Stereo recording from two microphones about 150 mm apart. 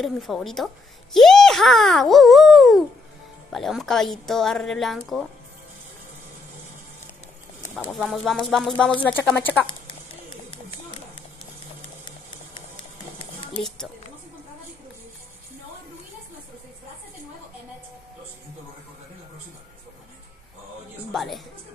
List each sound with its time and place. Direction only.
0.0 s a child's voice: centre (ahead or behind)
7.9 s a child's voice: centre (ahead or behind)
9.1 s speech: 15° left (ahead or behind)
9.5 s speech: 30° left (ahead or behind)
10.5 s a sound: 35° left (ahead or behind)
13.6 s speech: 5° left (ahead or behind)
21.1 s a woman's voice: centre (ahead or behind)